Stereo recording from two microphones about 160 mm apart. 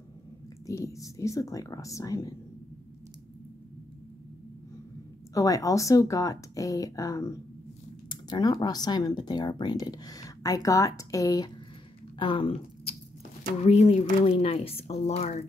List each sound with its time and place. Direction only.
0.7 s speech: 20° left (ahead or behind)
5.3 s speech: 20° left (ahead or behind); by 15.3 s 45° left (ahead or behind)